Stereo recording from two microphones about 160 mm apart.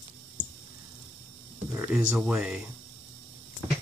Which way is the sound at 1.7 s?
15° right (ahead or behind).